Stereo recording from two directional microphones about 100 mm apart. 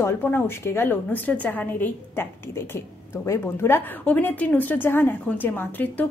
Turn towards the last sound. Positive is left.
turn(degrees=15)  # may be behind; listen again after turning